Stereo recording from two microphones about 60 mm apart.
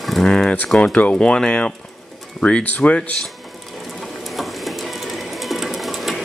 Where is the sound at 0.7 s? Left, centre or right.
Left.